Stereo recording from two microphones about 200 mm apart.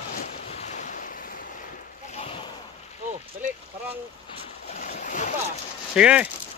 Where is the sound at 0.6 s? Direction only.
35° left (ahead or behind).